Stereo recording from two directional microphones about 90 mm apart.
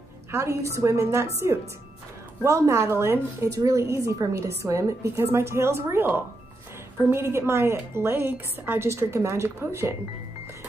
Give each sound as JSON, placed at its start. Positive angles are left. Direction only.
{"t": 0.3, "sound": "a woman's voice", "side_deg": -30}